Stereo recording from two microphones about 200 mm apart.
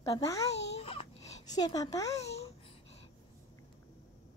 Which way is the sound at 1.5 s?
20° left (ahead or behind).